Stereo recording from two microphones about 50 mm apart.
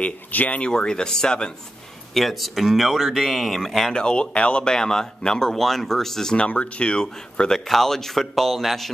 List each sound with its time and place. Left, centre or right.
0.3 s speech: left
0.6 s speech: centre
2.1 s speech: centre
3.9 s speech: centre
6.3 s speech: left; by 8.9 s centre